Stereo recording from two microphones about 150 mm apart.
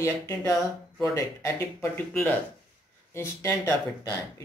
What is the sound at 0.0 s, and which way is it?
Speech, 15° left (ahead or behind).